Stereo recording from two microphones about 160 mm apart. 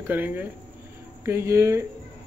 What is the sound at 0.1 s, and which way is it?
Speech, 10° right (ahead or behind).